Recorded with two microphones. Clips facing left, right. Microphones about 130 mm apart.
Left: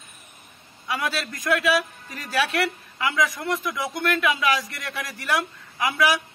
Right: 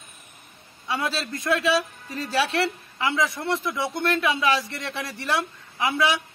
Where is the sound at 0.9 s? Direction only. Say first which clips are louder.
Even; 25° right (ahead or behind).